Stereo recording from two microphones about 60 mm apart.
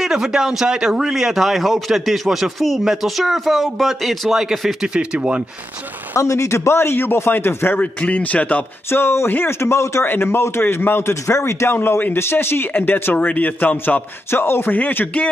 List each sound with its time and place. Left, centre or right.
0.0 s speech: centre
6.1 s speech: left
7.8 s a man's voice: left
8.9 s speech: left
10.0 s a man's voice: left
14.3 s a man's voice: left
14.8 s a man's voice: left